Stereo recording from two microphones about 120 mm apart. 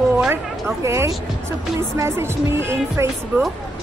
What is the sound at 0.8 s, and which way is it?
Speech, 25° right (ahead or behind).